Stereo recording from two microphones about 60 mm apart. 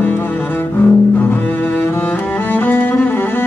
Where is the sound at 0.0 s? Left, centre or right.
Left.